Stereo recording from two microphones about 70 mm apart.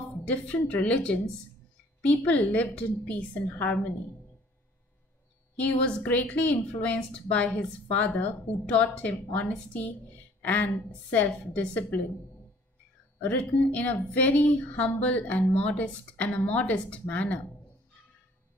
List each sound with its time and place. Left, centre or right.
0.1 s speech: left
5.6 s a woman's voice: left
13.2 s speech: left